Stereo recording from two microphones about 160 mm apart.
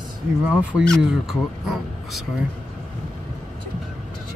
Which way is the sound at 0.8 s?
5° left (ahead or behind).